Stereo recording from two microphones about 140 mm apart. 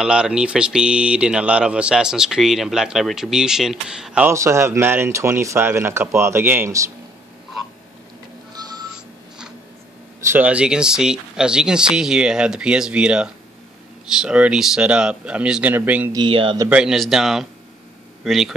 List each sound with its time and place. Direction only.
0.0 s speech: 5° right (ahead or behind)
4.3 s speech: 20° right (ahead or behind)
10.3 s speech: 10° right (ahead or behind)
16.1 s speech: 35° right (ahead or behind)
16.6 s speech: 5° right (ahead or behind)